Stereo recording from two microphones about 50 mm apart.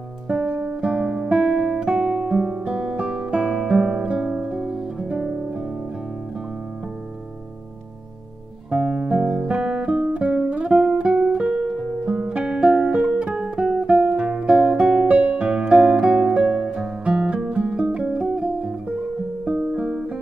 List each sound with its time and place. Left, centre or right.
0.3 s guitar: centre
4.1 s music: centre
8.6 s music: centre